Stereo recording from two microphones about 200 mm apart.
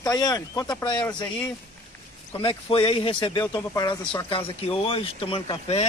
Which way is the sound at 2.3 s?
25° left (ahead or behind).